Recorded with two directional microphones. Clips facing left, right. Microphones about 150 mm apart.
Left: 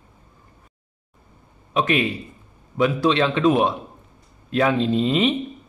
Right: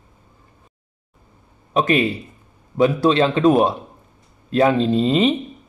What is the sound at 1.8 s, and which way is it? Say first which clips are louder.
Speech: right 3 dB; 35° right (ahead or behind).